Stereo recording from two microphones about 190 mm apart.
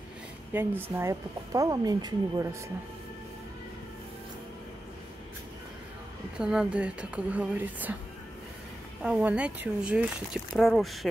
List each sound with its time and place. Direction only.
0.5 s a woman's voice: 10° right (ahead or behind)
6.3 s a woman's voice: 5° right (ahead or behind)
9.0 s speech: 5° right (ahead or behind)